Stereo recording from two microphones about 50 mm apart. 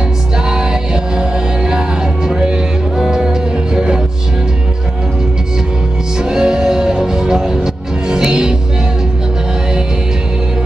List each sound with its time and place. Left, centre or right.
0.5 s music: centre
6.1 s music: centre